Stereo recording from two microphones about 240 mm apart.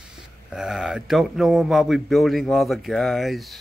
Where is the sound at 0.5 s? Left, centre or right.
Centre.